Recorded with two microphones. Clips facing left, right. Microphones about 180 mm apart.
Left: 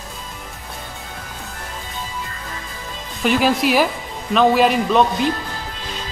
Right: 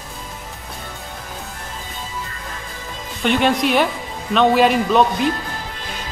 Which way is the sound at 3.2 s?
Centre (ahead or behind).